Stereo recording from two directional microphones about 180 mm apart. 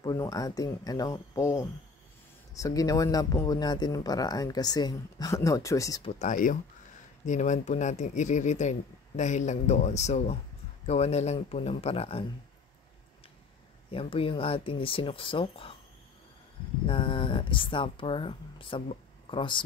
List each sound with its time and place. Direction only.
0.0 s speech: 20° left (ahead or behind)
6.1 s speech: 45° left (ahead or behind)
13.8 s speech: 30° left (ahead or behind)
16.8 s speech: 30° left (ahead or behind)